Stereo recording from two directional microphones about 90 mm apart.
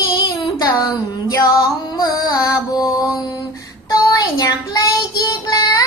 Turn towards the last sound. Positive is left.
turn(degrees=45)  # may be behind; listen again after turning